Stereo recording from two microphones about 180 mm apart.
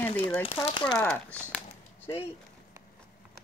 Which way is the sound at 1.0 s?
10° left (ahead or behind).